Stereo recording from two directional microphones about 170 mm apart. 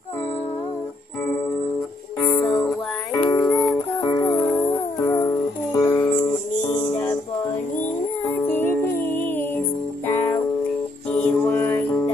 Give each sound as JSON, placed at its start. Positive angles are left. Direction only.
{"t": 2.4, "sound": "music", "side_deg": 5}
{"t": 3.2, "sound": "music", "side_deg": 25}
{"t": 3.4, "sound": "music", "side_deg": 5}
{"t": 8.5, "sound": "music", "side_deg": 10}